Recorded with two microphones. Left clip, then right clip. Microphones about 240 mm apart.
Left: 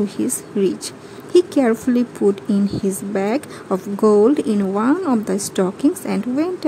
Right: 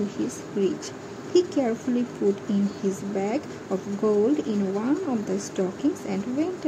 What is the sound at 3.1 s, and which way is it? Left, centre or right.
A woman's voice, left.